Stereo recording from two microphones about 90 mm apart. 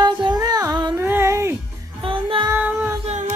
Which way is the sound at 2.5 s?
20° right (ahead or behind).